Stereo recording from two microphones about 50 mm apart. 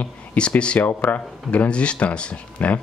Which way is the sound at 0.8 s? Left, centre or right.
Left.